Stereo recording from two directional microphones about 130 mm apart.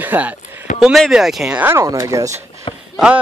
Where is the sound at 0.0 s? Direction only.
15° right (ahead or behind).